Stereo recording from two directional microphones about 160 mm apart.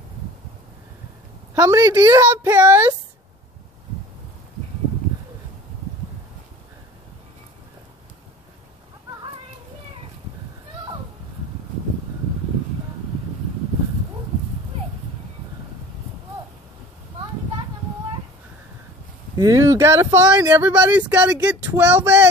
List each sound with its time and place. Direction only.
1.5 s speech: 20° right (ahead or behind)
19.3 s speech: 20° right (ahead or behind)
20.6 s speech: 10° right (ahead or behind)